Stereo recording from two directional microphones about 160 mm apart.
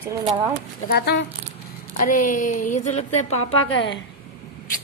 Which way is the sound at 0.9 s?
90° left.